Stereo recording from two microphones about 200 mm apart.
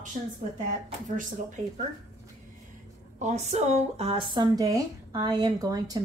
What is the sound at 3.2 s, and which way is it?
Speech, 35° right (ahead or behind).